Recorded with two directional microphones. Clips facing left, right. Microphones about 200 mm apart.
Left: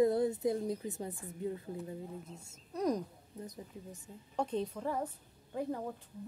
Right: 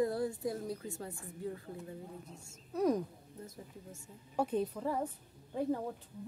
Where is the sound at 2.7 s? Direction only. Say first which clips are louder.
Right 2 dB; 5° right (ahead or behind).